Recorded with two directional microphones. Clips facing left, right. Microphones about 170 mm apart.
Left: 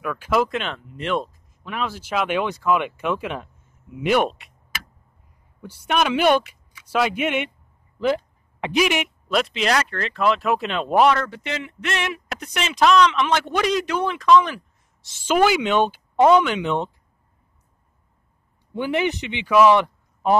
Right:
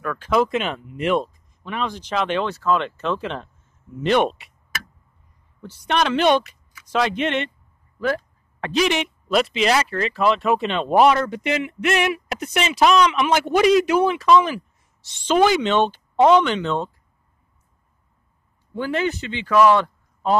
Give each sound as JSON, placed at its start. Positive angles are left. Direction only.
{"t": 0.0, "sound": "speech", "side_deg": 10}
{"t": 5.6, "sound": "speech", "side_deg": 10}
{"t": 11.1, "sound": "speech", "side_deg": -15}
{"t": 18.7, "sound": "speech", "side_deg": 15}